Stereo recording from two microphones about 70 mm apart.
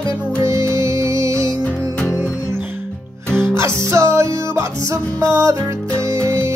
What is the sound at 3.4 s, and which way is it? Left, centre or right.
Music, right.